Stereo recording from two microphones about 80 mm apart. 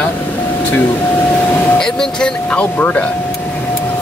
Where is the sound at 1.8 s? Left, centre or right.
Centre.